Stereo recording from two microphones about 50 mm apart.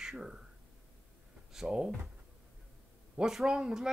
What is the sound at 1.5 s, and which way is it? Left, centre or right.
Speech, centre.